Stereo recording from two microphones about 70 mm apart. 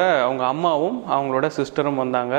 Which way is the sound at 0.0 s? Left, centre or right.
Centre.